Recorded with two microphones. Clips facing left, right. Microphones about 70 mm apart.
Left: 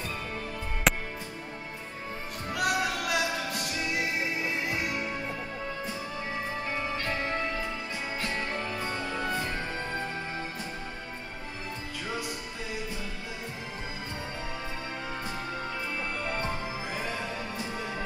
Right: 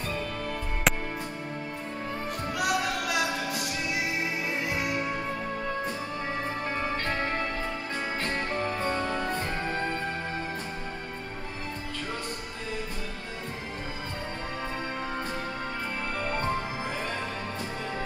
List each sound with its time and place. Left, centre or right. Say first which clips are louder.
0.9 s music: even; centre
2.5 s music: even; centre
8.2 s music: right 2 dB; right